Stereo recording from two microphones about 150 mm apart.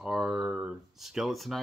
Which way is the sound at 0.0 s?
5° right (ahead or behind).